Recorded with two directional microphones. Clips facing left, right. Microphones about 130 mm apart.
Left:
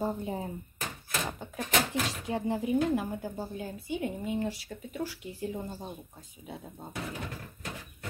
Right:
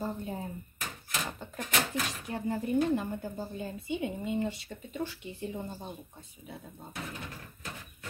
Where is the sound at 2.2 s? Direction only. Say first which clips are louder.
Left 3 dB; 25° left (ahead or behind).